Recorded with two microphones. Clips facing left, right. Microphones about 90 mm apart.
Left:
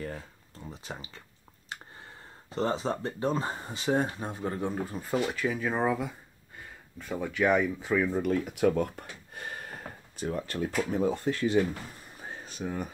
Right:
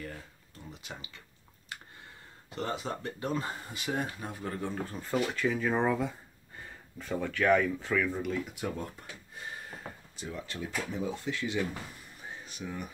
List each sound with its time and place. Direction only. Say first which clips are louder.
0.7 s speech: left 4 dB; 35° left (ahead or behind)
1.7 s a sound: left 3 dB; 30° left (ahead or behind)
2.5 s speech: left 6 dB; 30° left (ahead or behind)
4.7 s speech: left 2 dB; 10° left (ahead or behind)
8.1 s speech: left 5 dB; 50° left (ahead or behind)
12.2 s a sound: left 5 dB; 40° left (ahead or behind)